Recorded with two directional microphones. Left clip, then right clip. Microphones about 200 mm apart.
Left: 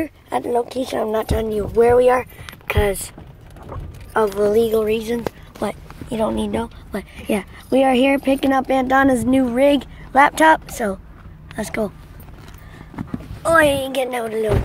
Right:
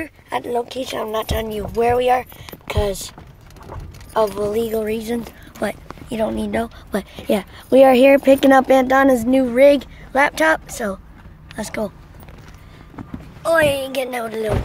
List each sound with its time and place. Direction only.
0.0 s speech: centre (ahead or behind)
2.4 s speech: 10° right (ahead or behind)
4.1 s a woman's voice: 5° right (ahead or behind)
6.6 s speech: 20° right (ahead or behind)
7.2 s speech: 10° right (ahead or behind); by 8.8 s 25° right (ahead or behind)
8.8 s speech: 10° right (ahead or behind)
13.0 s a sound: 50° left (ahead or behind)
13.4 s speech: 10° left (ahead or behind)